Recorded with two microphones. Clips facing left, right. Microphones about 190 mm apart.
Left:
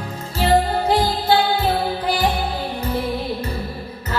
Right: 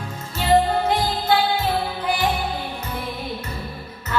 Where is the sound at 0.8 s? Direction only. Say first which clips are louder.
Left 3 dB; 35° left (ahead or behind).